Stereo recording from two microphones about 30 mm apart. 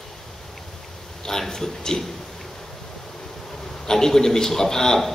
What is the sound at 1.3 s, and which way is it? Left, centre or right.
Speech, centre.